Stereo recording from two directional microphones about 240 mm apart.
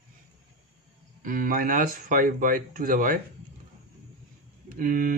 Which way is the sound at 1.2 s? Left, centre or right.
Right.